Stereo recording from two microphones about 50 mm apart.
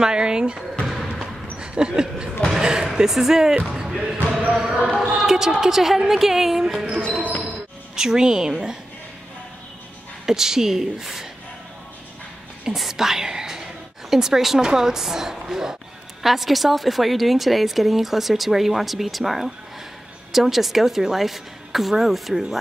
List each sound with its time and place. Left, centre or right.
0.0 s a woman's voice: centre
1.2 s dog: centre
2.5 s a woman's voice: centre
4.2 s speech: right
4.6 s a woman's voice: centre
7.0 s speech: centre
7.9 s a woman's voice: centre
10.2 s a woman's voice: centre
12.6 s speech: centre